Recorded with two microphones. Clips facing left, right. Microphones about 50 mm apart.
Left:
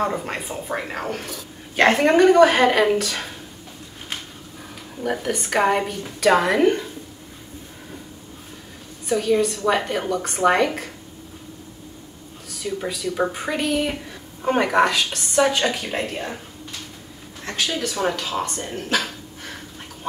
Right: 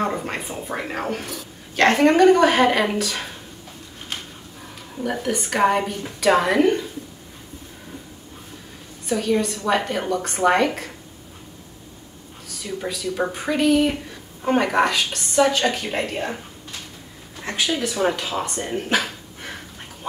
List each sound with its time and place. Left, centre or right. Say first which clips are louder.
0.0 s speech: even; centre
4.9 s speech: even; centre
9.1 s speech: left 2 dB; centre
12.6 s a woman's voice: left 1 dB; centre
17.4 s a woman's voice: right 2 dB; centre
18.6 s a sound: right 2 dB; centre